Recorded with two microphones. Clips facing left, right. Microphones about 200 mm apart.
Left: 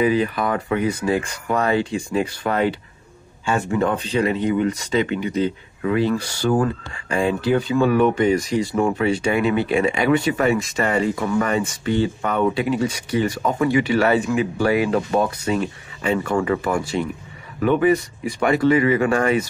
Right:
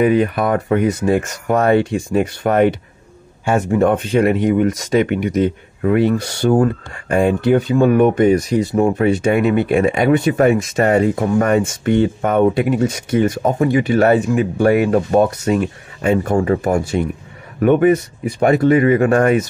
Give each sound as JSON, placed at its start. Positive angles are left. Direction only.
{"t": 0.0, "sound": "speech", "side_deg": -55}
{"t": 3.7, "sound": "speech", "side_deg": -50}
{"t": 9.0, "sound": "speech", "side_deg": -55}
{"t": 16.2, "sound": "speech", "side_deg": -40}